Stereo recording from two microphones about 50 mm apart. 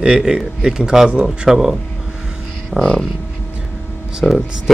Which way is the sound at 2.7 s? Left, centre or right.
Centre.